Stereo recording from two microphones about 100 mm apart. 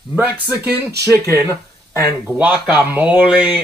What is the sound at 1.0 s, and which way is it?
Speech, 30° right (ahead or behind).